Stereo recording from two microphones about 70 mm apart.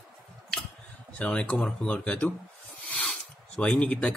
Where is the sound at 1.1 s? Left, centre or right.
Centre.